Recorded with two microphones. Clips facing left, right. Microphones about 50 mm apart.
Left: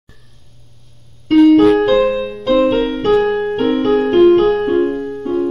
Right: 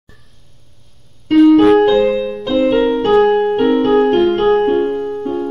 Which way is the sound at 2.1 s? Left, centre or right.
Centre.